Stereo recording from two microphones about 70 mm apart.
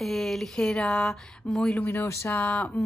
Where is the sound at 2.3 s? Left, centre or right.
Left.